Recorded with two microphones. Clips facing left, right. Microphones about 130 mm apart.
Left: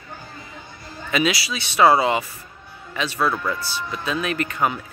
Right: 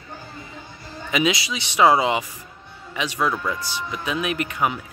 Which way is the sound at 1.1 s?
20° right (ahead or behind).